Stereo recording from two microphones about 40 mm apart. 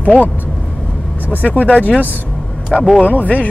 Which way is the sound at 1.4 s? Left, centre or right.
Left.